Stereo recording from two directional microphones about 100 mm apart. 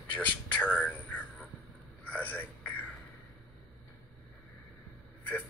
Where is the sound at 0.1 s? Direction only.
15° left (ahead or behind).